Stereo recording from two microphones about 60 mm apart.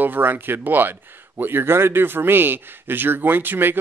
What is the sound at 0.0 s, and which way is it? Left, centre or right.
Speech, right.